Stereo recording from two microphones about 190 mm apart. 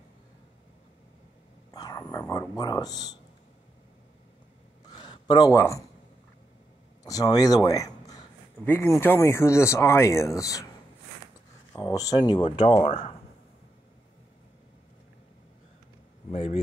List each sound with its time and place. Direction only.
1.7 s speech: 20° left (ahead or behind)
4.8 s a sound: 20° left (ahead or behind)
7.0 s a sound: 20° left (ahead or behind)
9.0 s speech: 10° left (ahead or behind)
11.8 s speech: 20° left (ahead or behind)
16.3 s speech: 30° left (ahead or behind)